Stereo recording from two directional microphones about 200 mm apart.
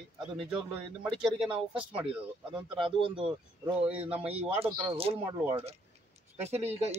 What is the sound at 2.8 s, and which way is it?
Speech, 25° right (ahead or behind).